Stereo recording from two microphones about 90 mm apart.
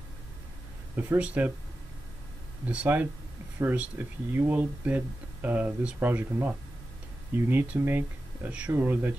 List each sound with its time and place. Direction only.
0.9 s speech: 20° right (ahead or behind)
2.6 s speech: 15° right (ahead or behind)
8.7 s speech: 25° right (ahead or behind)